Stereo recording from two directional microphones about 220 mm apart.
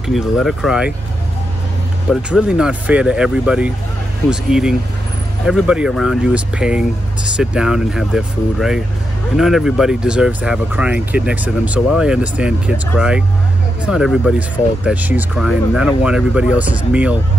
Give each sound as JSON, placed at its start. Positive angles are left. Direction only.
{"t": 0.0, "sound": "speech", "side_deg": 0}
{"t": 2.0, "sound": "speech", "side_deg": -5}